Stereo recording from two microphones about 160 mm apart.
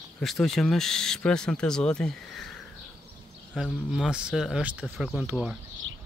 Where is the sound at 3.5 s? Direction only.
Centre (ahead or behind).